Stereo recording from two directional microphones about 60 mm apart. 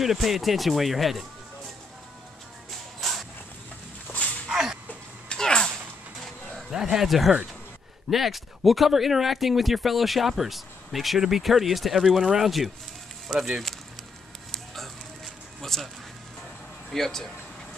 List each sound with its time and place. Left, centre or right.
0.0 s speech: centre
3.0 s a sound: centre
4.1 s dog: left
4.5 s dog: centre
5.3 s a sound: centre
6.7 s speech: centre
15.6 s speech: centre
16.9 s speech: centre